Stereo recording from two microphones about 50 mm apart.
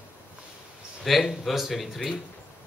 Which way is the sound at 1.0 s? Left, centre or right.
Centre.